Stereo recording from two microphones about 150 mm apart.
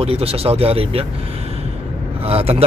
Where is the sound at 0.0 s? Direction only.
40° right (ahead or behind).